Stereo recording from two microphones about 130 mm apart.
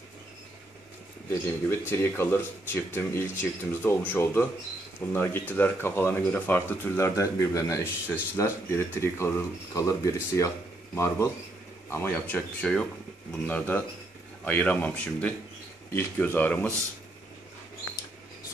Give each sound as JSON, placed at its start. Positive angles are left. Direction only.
{"t": 1.3, "sound": "speech", "side_deg": 20}